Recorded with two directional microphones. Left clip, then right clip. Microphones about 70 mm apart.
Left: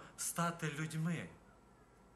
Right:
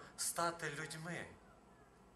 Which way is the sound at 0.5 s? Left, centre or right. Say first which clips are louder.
Left 1 dB; left.